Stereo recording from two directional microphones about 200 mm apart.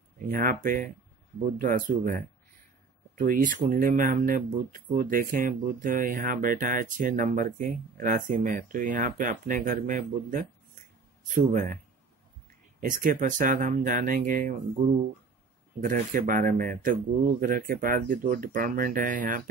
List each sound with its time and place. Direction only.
0.3 s speech: 45° right (ahead or behind)
12.8 s speech: 40° right (ahead or behind)
15.8 s speech: 40° right (ahead or behind)